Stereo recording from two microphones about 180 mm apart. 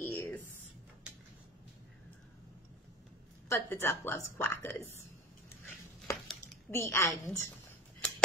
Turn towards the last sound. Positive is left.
turn(degrees=15)  # may be behind; listen again after turning